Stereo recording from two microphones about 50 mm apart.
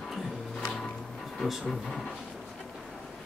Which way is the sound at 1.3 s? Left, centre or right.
Centre.